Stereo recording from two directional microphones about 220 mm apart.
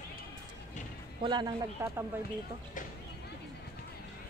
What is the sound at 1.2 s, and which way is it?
Speech, 20° right (ahead or behind).